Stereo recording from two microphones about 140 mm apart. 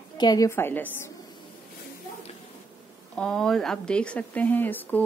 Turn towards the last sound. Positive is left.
turn(degrees=15)  # may be behind; listen again after turning